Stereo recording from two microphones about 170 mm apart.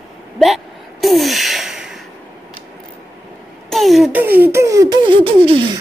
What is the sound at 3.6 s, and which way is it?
Beatboxing, centre (ahead or behind).